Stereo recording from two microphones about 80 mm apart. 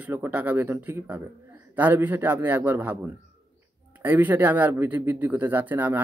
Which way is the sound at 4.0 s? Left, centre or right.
Right.